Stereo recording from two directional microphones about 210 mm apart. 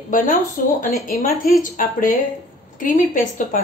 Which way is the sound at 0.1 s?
40° left (ahead or behind).